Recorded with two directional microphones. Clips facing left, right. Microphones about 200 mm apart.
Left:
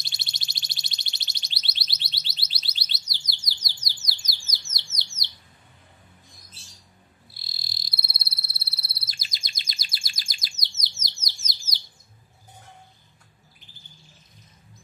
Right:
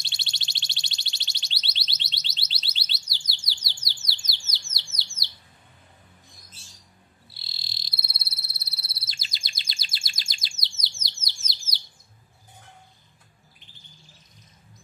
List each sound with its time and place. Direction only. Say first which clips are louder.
0.0 s alarm: right 1 dB; 25° right (ahead or behind)
7.4 s frog: left 1 dB; 25° right (ahead or behind)